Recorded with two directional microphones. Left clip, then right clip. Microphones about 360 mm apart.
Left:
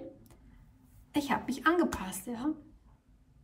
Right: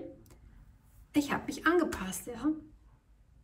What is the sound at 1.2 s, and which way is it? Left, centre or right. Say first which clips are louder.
Speech: even; centre.